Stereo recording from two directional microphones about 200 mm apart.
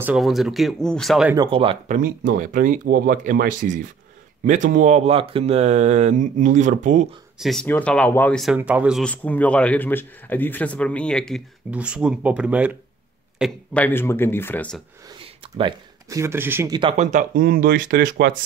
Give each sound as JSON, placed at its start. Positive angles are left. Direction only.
{"t": 0.0, "sound": "a man's voice", "side_deg": -5}
{"t": 1.3, "sound": "speech", "side_deg": -25}
{"t": 1.9, "sound": "speech", "side_deg": -40}
{"t": 7.3, "sound": "a man's voice", "side_deg": 0}
{"t": 13.4, "sound": "speech", "side_deg": 10}
{"t": 15.5, "sound": "speech", "side_deg": -20}
{"t": 16.9, "sound": "speech", "side_deg": -35}